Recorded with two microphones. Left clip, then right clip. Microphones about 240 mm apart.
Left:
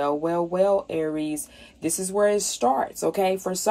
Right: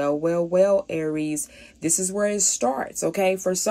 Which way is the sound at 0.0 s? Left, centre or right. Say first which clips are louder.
Right 1 dB; right.